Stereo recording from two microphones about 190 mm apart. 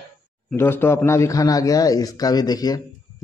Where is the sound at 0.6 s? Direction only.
10° left (ahead or behind).